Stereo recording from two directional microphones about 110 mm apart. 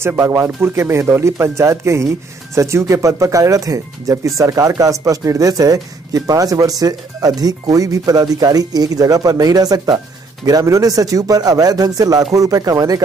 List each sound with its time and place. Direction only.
0.0 s speech: 25° right (ahead or behind)